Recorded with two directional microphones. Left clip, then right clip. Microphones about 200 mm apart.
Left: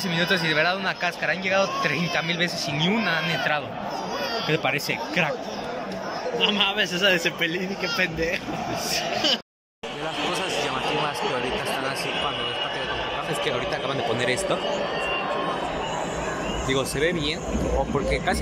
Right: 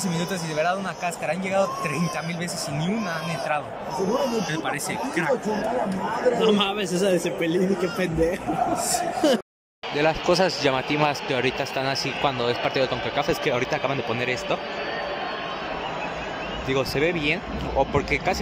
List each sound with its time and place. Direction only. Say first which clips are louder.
0.2 s speech: left 5 dB; 10° right (ahead or behind)
2.8 s speech: left 7 dB; 5° right (ahead or behind)
4.5 s speech: left 3 dB; 10° left (ahead or behind)
6.4 s a man's voice: even; 20° right (ahead or behind)
13.5 s a man's voice: right 2 dB; 5° right (ahead or behind)
16.7 s a man's voice: right 2 dB; 5° right (ahead or behind)